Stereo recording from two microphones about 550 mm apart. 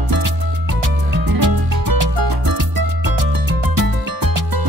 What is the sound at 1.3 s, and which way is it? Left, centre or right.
Music, right.